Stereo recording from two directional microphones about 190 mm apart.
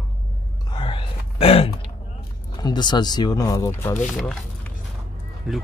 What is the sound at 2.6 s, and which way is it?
Speech, 25° left (ahead or behind).